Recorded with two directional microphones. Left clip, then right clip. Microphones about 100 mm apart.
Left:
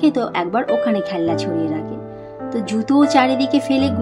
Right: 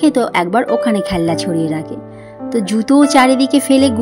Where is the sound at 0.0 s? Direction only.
45° right (ahead or behind).